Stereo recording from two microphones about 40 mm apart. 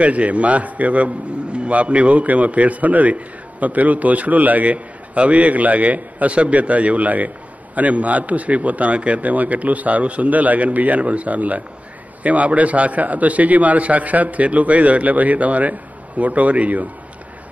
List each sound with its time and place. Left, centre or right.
0.0 s a man's voice: right